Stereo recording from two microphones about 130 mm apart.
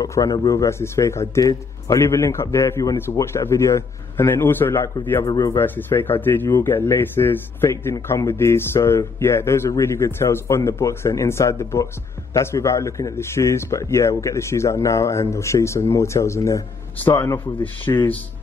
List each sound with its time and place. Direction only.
0.0 s a man's voice: 25° left (ahead or behind)
5.2 s a man's voice: 25° left (ahead or behind)
5.6 s a man's voice: 15° left (ahead or behind)